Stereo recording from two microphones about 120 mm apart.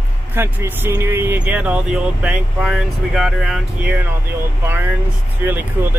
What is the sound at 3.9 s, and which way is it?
Speech, 15° right (ahead or behind).